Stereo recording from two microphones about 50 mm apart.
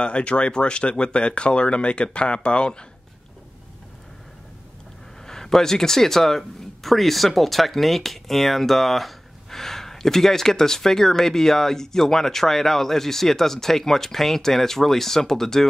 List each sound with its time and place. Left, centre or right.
0.0 s speech: left
5.2 s speech: centre